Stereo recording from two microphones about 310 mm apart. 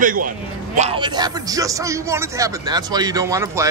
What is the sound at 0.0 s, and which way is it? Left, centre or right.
A man's voice, right.